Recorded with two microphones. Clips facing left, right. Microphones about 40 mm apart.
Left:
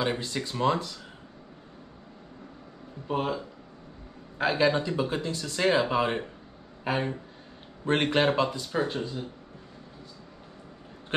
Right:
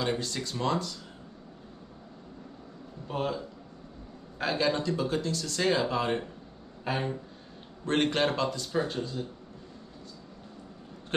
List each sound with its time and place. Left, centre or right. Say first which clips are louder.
0.0 s speech: left 2 dB; centre
3.1 s speech: left 3 dB; centre